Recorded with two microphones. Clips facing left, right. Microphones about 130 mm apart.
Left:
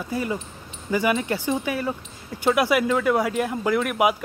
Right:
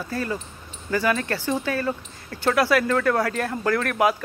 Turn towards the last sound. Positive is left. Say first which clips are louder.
# even
turn(degrees=15)  # may be behind; listen again after turning